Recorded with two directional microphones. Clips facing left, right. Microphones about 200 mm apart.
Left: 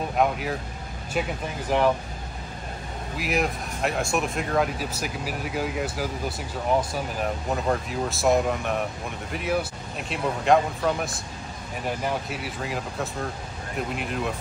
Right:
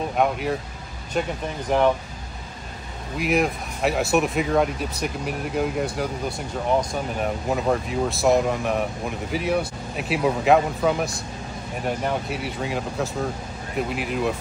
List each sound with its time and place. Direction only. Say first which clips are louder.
0.2 s speech: right 2 dB; centre (ahead or behind)
3.2 s speech: right 4 dB; centre (ahead or behind)